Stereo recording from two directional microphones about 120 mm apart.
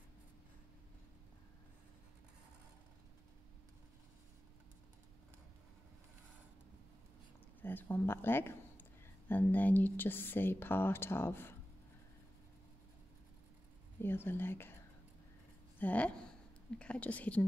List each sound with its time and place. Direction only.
7.6 s speech: 15° left (ahead or behind)
14.0 s speech: 20° left (ahead or behind)
15.8 s speech: 10° left (ahead or behind)